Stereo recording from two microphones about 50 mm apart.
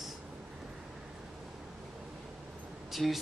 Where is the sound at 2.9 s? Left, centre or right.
Centre.